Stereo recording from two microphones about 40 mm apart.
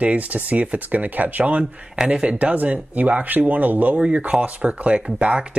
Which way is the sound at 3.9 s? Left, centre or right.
Right.